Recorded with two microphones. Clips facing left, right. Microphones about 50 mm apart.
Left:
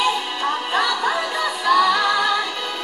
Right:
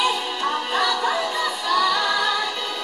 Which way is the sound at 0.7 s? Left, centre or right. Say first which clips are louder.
Left 1 dB; centre.